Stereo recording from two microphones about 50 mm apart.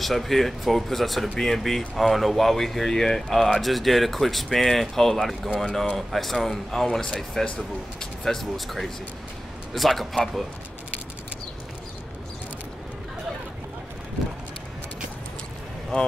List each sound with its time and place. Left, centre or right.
0.0 s speech: centre
15.9 s speech: centre